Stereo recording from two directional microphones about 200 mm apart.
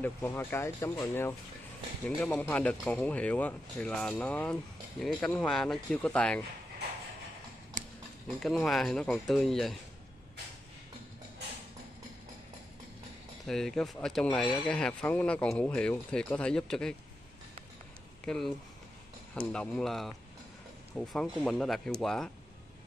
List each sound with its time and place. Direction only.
0.0 s speech: 10° left (ahead or behind)
8.4 s speech: centre (ahead or behind)
13.5 s speech: centre (ahead or behind)
18.2 s speech: 5° left (ahead or behind)